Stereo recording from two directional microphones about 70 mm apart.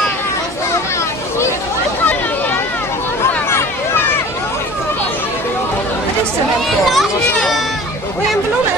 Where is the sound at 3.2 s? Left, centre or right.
Left.